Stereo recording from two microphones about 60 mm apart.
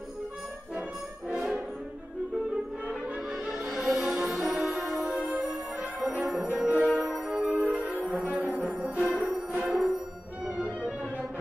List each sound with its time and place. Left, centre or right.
1.3 s brass instrument: centre
2.5 s music: centre
3.5 s music: centre
7.0 s music: centre
9.7 s music: centre
10.5 s music: centre